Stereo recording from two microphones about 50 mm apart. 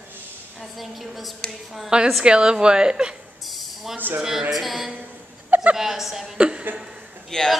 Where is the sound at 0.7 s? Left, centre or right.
Centre.